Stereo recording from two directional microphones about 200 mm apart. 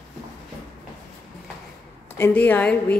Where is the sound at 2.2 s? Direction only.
10° left (ahead or behind).